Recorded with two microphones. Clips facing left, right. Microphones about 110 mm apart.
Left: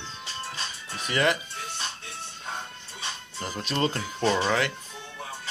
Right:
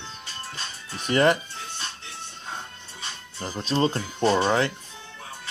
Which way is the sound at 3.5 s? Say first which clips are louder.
Right 4 dB; 25° right (ahead or behind).